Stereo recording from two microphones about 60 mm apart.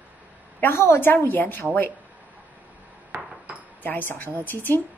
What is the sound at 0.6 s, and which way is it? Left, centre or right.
A woman's voice, left.